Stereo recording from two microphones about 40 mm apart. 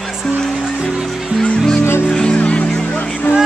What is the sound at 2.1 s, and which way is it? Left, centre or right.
Music, left.